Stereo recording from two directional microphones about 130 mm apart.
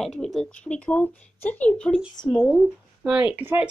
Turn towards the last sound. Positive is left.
turn(degrees=-15)  # may be behind; listen again after turning